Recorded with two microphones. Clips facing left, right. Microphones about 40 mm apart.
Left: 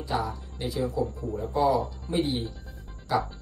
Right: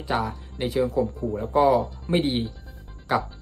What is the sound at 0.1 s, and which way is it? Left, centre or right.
Speech, right.